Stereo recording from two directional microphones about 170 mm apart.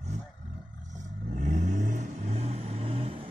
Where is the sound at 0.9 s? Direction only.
45° right (ahead or behind).